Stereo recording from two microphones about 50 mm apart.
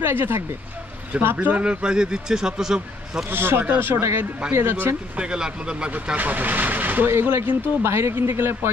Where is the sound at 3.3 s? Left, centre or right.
Right.